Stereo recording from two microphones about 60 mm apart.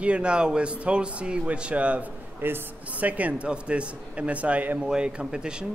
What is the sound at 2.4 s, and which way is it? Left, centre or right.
Speech, right.